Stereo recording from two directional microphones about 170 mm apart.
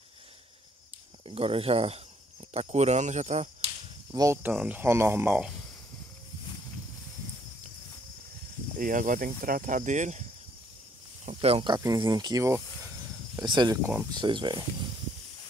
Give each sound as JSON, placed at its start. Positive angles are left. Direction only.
{"t": 1.2, "sound": "speech", "side_deg": -35}
{"t": 4.1, "sound": "speech", "side_deg": -20}
{"t": 8.7, "sound": "speech", "side_deg": -55}
{"t": 11.2, "sound": "speech", "side_deg": -35}